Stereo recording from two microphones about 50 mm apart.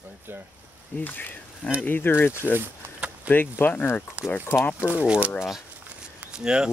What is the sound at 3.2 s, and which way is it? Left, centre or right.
Speech, left.